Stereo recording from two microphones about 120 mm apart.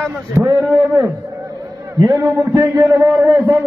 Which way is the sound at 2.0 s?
25° right (ahead or behind).